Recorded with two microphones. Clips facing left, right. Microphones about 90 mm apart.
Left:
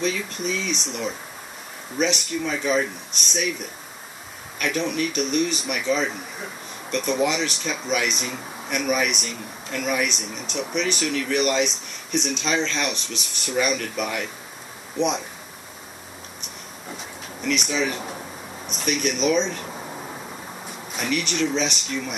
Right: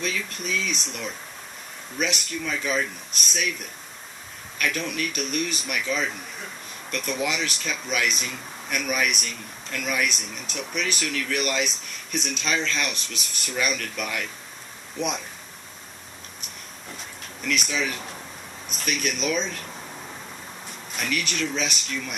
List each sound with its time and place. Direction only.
0.0 s speech: centre (ahead or behind)
4.6 s speech: 5° left (ahead or behind)
16.9 s speech: centre (ahead or behind)
19.8 s a sound: 20° left (ahead or behind)
20.9 s speech: 5° left (ahead or behind)